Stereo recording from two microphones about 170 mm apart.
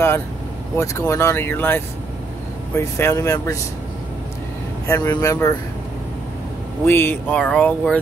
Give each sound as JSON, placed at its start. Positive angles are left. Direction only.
{"t": 0.7, "sound": "speech", "side_deg": 15}
{"t": 4.8, "sound": "speech", "side_deg": 20}
{"t": 6.9, "sound": "speech", "side_deg": 15}